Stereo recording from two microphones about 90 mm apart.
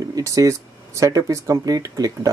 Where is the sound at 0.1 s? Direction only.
40° right (ahead or behind).